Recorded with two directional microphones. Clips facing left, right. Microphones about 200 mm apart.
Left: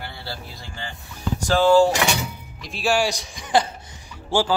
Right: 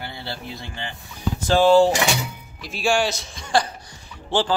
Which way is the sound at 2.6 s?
Centre (ahead or behind).